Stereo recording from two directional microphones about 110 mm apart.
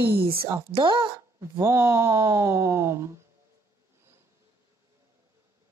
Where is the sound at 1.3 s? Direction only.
25° right (ahead or behind).